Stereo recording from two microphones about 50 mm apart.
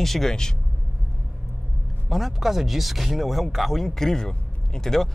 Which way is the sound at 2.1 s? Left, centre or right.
Centre.